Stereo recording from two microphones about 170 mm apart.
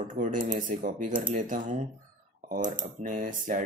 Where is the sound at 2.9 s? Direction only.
50° right (ahead or behind).